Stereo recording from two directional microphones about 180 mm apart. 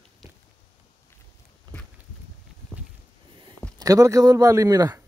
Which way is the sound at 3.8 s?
20° right (ahead or behind).